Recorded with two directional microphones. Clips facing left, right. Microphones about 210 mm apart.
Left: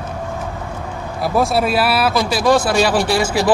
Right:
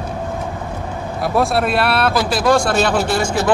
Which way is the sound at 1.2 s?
Centre (ahead or behind).